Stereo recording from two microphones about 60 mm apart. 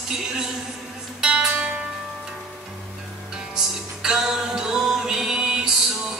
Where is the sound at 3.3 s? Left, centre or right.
Centre.